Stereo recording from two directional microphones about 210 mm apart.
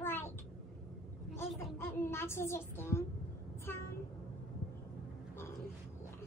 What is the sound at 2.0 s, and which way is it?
A child's voice, 10° left (ahead or behind).